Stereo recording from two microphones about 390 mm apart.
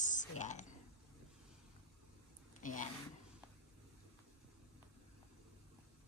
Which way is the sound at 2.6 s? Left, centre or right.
Centre.